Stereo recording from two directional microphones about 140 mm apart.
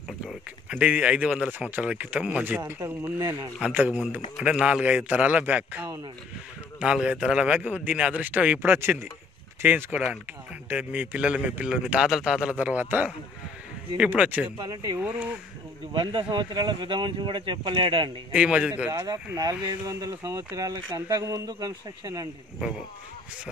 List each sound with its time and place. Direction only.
0.3 s speech: 10° right (ahead or behind); by 3.5 s 25° right (ahead or behind)
3.5 s speech: 10° right (ahead or behind)
14.6 s speech: 25° right (ahead or behind)
15.0 s speech: 10° right (ahead or behind)
15.9 s speech: 40° right (ahead or behind)
18.3 s speech: 10° right (ahead or behind)
18.9 s speech: 30° right (ahead or behind)